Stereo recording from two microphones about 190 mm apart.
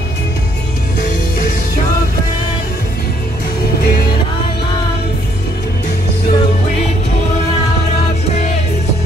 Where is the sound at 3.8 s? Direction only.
55° left (ahead or behind).